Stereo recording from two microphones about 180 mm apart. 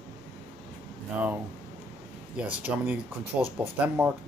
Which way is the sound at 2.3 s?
10° right (ahead or behind).